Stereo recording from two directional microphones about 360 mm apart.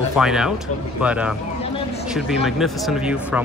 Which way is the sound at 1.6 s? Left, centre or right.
Centre.